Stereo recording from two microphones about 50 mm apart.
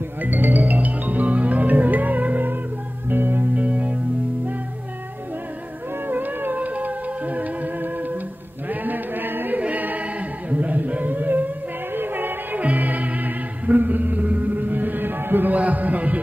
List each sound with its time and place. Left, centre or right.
0.2 s music: right
3.5 s music: right
6.0 s music: right
8.6 s a sound: right
9.6 s choir: right
12.5 s music: right